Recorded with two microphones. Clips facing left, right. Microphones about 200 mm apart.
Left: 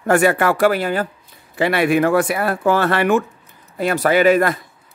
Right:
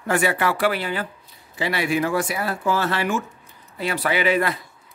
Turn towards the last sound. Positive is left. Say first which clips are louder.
# left 7 dB
turn(degrees=45)  # may be behind; listen again after turning